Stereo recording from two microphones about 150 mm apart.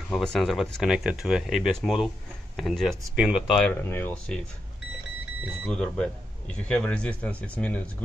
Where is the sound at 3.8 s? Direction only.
15° left (ahead or behind).